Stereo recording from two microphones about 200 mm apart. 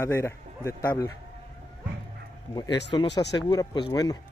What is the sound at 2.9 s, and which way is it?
Speech, 25° left (ahead or behind).